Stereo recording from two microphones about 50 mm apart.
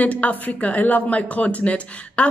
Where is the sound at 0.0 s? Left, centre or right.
Left.